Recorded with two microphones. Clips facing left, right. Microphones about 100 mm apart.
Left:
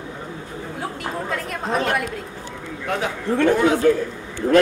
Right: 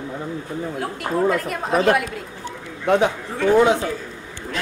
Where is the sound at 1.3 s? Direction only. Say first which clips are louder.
Right 3 dB; 5° right (ahead or behind).